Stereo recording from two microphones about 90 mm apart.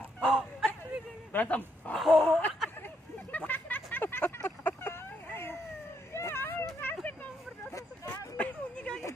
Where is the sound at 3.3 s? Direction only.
20° left (ahead or behind).